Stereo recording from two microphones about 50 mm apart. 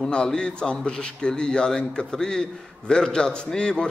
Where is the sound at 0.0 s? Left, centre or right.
Centre.